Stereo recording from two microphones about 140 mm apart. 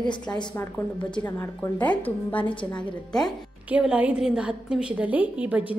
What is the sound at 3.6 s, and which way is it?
A woman's voice, 10° right (ahead or behind).